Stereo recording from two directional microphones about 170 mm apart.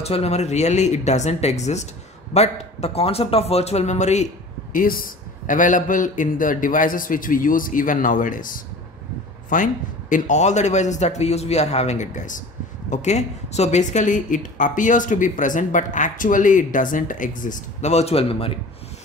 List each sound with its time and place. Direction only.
0.0 s a man's voice: 40° left (ahead or behind)
4.7 s a man's voice: 55° left (ahead or behind); by 18.5 s 35° left (ahead or behind)